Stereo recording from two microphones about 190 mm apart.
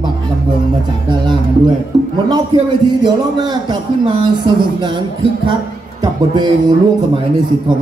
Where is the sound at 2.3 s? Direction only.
25° right (ahead or behind).